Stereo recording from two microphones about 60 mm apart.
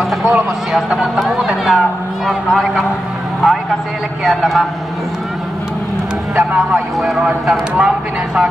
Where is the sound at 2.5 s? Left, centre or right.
Centre.